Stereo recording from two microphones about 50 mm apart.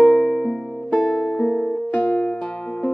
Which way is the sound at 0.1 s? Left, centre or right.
Left.